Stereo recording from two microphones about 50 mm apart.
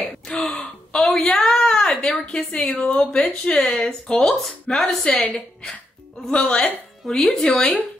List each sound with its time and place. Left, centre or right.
0.4 s gasp: centre
1.4 s a sound: centre
2.3 s speech: centre
2.7 s a woman's voice: left; by 4.4 s centre
4.4 s speech: centre
5.1 s speech: centre
6.3 s speech: left
7.1 s speech: centre